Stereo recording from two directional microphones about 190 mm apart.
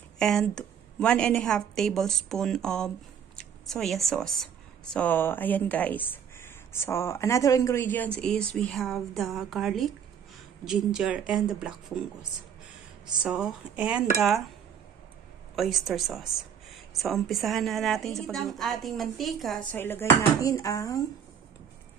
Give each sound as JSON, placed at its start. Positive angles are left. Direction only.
{"t": 0.2, "sound": "a woman's voice", "side_deg": 5}
{"t": 13.0, "sound": "a woman's voice", "side_deg": -5}
{"t": 15.5, "sound": "a woman's voice", "side_deg": 0}
{"t": 19.7, "sound": "speech", "side_deg": 10}